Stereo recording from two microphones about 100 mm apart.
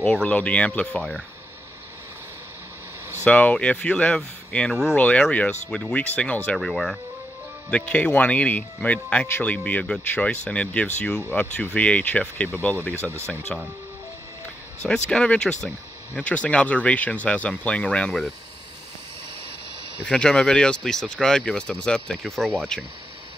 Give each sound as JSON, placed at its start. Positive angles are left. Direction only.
{"t": 0.0, "sound": "speech", "side_deg": 10}
{"t": 3.3, "sound": "speech", "side_deg": 15}
{"t": 6.6, "sound": "speech", "side_deg": 5}
{"t": 7.7, "sound": "speech", "side_deg": 15}
{"t": 13.5, "sound": "speech", "side_deg": 5}
{"t": 14.9, "sound": "speech", "side_deg": 10}
{"t": 20.1, "sound": "speech", "side_deg": 10}